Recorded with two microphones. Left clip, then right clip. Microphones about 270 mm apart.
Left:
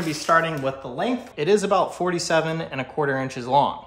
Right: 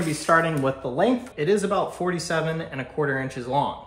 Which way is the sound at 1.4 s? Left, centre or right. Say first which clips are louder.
Left 4 dB; left.